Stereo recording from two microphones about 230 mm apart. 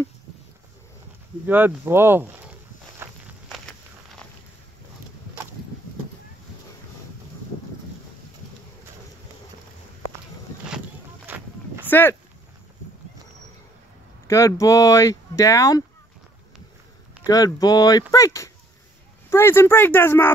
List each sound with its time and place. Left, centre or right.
1.5 s speech: centre
3.0 s walk: centre
11.2 s a sound: centre
11.9 s speech: centre
14.2 s speech: centre
17.2 s speech: centre